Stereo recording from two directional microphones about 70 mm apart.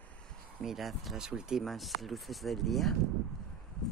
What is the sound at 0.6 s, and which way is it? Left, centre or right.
Speech, centre.